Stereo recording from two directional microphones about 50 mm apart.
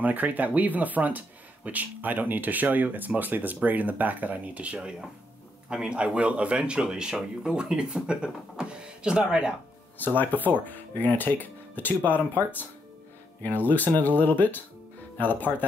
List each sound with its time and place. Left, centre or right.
0.0 s speech: right; by 9.5 s centre
9.9 s speech: left